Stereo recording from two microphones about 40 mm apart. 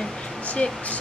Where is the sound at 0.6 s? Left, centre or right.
Left.